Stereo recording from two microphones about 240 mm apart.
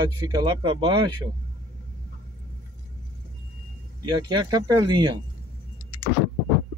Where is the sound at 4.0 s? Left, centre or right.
Centre.